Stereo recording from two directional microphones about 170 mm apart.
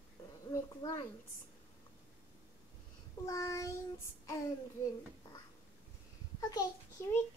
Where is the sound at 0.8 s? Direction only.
15° left (ahead or behind).